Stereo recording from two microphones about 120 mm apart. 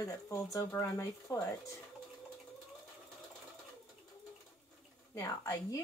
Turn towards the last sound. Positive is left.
turn(degrees=25)  # may be behind; listen again after turning